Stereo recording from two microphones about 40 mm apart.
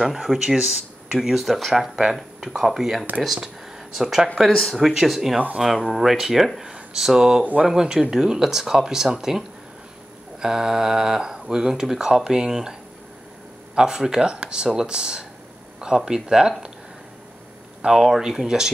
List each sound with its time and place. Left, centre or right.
0.0 s speech: centre
10.4 s speech: centre
13.7 s speech: centre
17.8 s speech: centre